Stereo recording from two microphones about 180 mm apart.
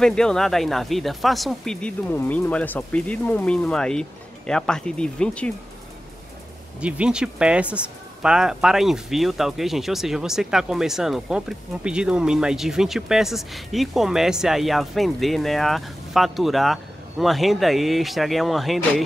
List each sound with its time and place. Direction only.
0.0 s speech: 5° left (ahead or behind)
6.8 s speech: 5° right (ahead or behind)